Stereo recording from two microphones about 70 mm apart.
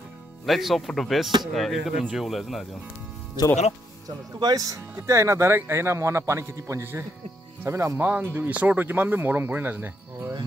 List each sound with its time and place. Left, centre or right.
0.5 s speech: centre
4.4 s speech: right
4.6 s speech: right
8.0 s speech: right